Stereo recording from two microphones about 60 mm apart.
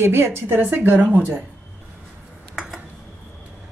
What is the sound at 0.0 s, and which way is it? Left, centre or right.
Speech, right.